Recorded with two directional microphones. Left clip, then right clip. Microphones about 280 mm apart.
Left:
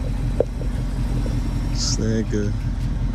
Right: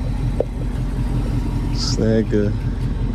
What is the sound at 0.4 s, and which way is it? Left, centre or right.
Vehicle, right.